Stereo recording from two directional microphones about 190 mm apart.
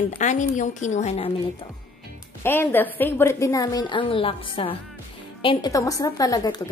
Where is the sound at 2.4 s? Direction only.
10° left (ahead or behind).